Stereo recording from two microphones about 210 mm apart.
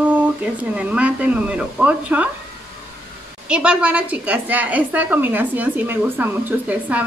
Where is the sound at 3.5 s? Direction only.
5° right (ahead or behind).